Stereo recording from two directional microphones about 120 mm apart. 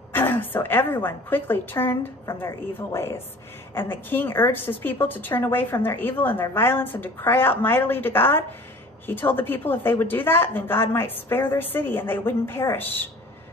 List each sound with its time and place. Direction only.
0.1 s a woman's voice: 15° left (ahead or behind)